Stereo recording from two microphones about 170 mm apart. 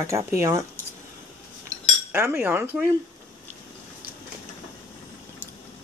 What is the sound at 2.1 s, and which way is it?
Speech, 15° right (ahead or behind).